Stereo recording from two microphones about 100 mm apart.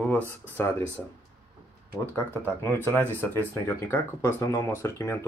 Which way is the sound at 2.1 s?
20° left (ahead or behind).